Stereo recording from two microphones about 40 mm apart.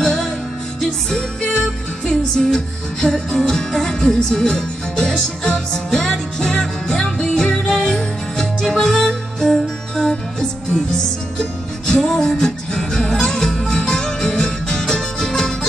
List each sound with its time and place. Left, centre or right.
0.0 s music: centre
11.9 s music: centre